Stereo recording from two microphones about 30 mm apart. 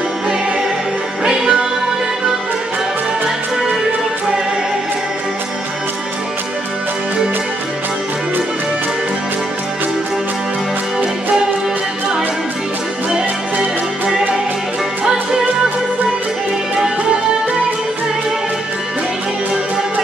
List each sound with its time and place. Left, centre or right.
1.2 s music: centre